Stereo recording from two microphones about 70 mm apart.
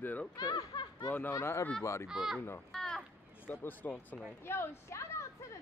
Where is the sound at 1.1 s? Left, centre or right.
Left.